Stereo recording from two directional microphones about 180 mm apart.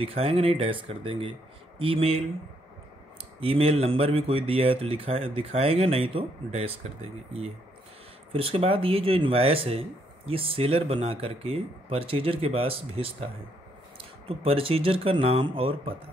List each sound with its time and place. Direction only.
0.0 s speech: 35° right (ahead or behind)
3.3 s speech: 30° right (ahead or behind)